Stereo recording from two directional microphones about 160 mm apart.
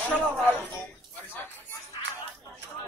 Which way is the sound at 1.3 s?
10° left (ahead or behind).